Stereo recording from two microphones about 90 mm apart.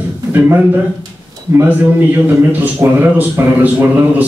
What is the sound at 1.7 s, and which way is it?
A man's voice, 20° right (ahead or behind).